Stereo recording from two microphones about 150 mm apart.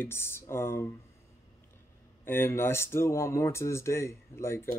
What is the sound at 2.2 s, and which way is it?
Speech, 15° left (ahead or behind).